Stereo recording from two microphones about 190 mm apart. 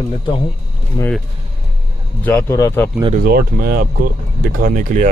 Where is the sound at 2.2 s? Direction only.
10° left (ahead or behind).